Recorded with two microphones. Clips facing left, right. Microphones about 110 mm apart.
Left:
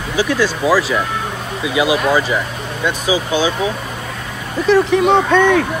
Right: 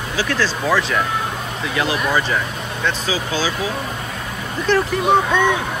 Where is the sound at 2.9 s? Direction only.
15° left (ahead or behind).